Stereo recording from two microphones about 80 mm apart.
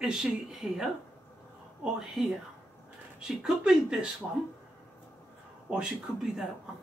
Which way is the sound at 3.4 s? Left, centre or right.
Centre.